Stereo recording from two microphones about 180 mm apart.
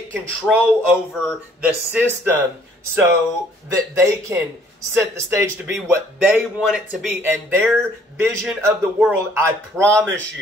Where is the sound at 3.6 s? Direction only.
15° right (ahead or behind).